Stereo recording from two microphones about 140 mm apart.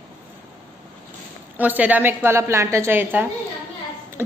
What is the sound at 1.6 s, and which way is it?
A woman's voice, 10° right (ahead or behind).